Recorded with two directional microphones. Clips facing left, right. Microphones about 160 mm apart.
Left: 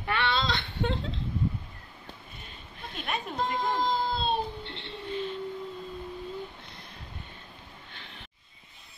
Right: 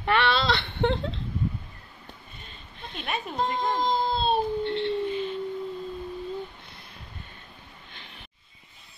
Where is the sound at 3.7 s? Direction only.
20° right (ahead or behind).